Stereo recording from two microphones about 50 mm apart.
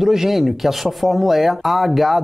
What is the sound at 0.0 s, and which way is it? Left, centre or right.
Speech, centre.